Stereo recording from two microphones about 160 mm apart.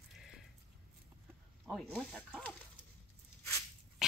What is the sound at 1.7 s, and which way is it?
Pig, centre (ahead or behind).